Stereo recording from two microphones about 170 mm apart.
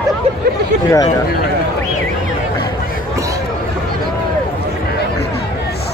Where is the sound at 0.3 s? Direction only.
40° right (ahead or behind).